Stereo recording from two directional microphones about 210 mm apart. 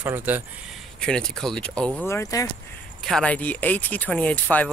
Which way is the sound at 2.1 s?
15° left (ahead or behind).